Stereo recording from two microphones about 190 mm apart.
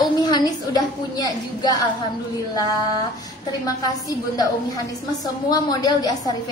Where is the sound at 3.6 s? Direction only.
20° left (ahead or behind).